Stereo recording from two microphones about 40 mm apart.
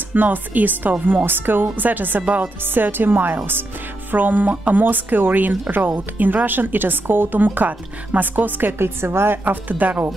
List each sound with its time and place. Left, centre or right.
0.1 s a woman's voice: right
1.9 s a woman's voice: right
2.2 s speech: right
2.6 s a woman's voice: right
8.7 s a woman's voice: right
9.4 s a woman's voice: right